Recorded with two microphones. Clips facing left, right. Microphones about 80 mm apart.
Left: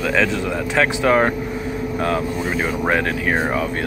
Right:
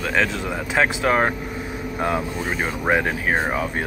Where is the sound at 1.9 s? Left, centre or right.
Centre.